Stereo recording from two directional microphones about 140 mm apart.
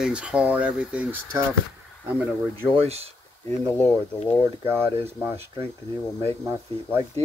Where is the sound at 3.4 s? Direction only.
15° left (ahead or behind).